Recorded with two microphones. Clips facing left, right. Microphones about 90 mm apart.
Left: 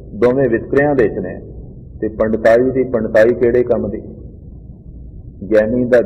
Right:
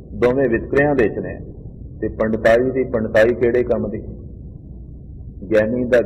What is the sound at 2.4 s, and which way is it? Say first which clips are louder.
Speech: left 3 dB; 10° left (ahead or behind).